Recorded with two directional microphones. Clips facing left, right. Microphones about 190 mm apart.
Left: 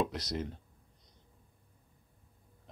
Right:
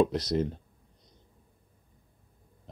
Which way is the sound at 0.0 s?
30° right (ahead or behind).